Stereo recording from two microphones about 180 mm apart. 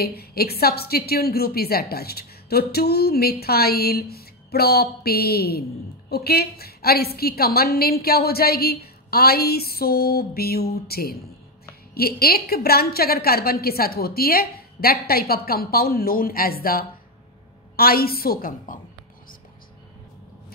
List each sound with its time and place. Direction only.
0.0 s a woman's voice: 60° left (ahead or behind)